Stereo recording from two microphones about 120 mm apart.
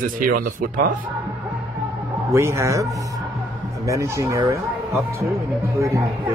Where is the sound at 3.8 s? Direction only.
25° right (ahead or behind).